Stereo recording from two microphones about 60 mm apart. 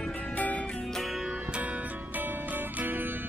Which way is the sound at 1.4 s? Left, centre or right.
Centre.